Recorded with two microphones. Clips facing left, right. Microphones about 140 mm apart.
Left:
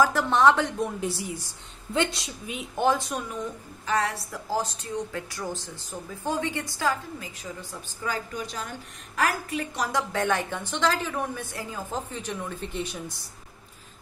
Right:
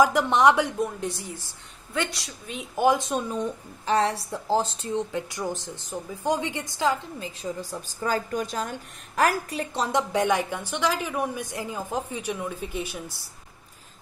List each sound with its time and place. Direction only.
0.0 s a woman's voice: 15° right (ahead or behind)
0.7 s a woman's voice: centre (ahead or behind)
2.0 s a woman's voice: 25° left (ahead or behind)
2.7 s a woman's voice: 10° right (ahead or behind)
3.0 s a woman's voice: 25° right (ahead or behind)
8.0 s a woman's voice: 45° right (ahead or behind); by 13.0 s 5° right (ahead or behind)